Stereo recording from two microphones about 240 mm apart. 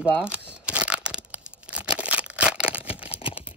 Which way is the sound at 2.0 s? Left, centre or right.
Centre.